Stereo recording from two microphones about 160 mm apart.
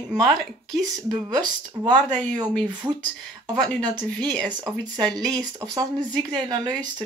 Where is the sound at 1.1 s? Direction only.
25° right (ahead or behind).